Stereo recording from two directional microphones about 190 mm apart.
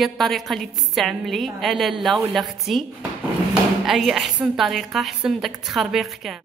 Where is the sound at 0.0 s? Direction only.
Centre (ahead or behind).